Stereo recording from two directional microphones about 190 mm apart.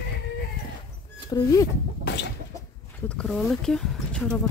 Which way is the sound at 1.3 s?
15° left (ahead or behind).